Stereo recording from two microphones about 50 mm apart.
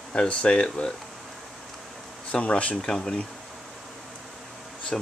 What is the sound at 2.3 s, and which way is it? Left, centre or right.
Speech, left.